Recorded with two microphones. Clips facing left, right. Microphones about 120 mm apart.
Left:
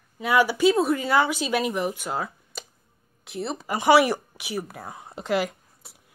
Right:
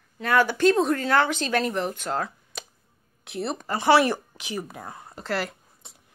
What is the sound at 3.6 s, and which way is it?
Speech, 15° left (ahead or behind).